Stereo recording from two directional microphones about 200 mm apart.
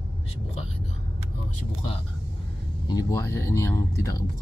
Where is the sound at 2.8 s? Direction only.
20° left (ahead or behind).